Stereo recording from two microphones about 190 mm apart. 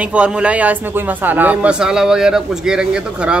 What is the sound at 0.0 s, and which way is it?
A man's voice, 5° right (ahead or behind).